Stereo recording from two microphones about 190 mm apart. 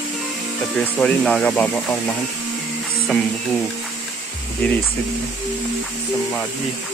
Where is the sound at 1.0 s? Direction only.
5° left (ahead or behind).